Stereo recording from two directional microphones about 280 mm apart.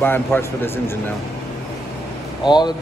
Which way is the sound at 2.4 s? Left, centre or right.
Centre.